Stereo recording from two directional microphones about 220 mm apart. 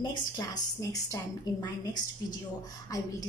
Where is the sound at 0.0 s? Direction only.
15° left (ahead or behind).